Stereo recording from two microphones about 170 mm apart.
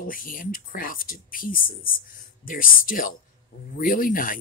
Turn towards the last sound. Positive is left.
turn(degrees=55)  # may be behind; listen again after turning